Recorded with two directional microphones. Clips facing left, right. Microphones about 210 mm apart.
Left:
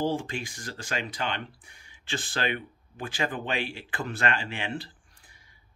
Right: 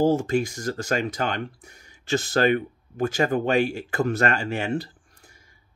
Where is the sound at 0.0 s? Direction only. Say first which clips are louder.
Right 9 dB; 45° right (ahead or behind).